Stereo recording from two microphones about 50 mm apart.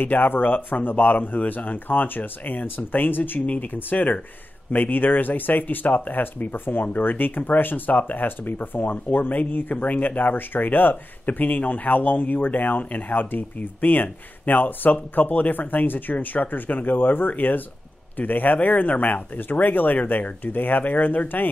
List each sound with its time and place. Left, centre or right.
0.0 s speech: left